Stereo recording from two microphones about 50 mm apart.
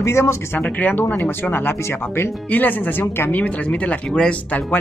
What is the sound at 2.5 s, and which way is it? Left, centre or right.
Speech, left.